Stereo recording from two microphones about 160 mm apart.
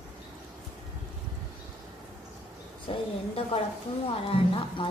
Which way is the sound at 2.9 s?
35° left (ahead or behind).